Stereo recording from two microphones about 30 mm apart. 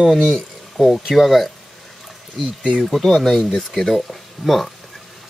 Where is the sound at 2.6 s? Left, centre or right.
Right.